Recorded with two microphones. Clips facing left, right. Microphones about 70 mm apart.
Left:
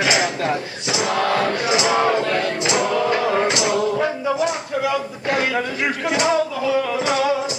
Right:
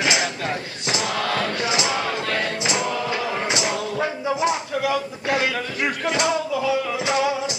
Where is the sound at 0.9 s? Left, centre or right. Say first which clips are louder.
Left 4 dB; left.